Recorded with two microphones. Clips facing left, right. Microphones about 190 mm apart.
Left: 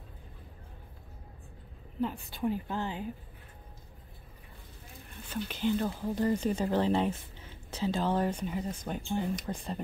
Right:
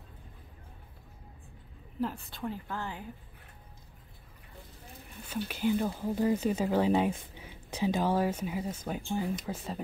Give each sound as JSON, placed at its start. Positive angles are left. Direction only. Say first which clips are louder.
{"t": 2.0, "sound": "a woman's voice", "louder": "left 1 dB", "side_deg": 0}
{"t": 2.4, "sound": "speech", "louder": "left 5 dB", "side_deg": 20}
{"t": 5.1, "sound": "speech", "louder": "right 1 dB", "side_deg": -10}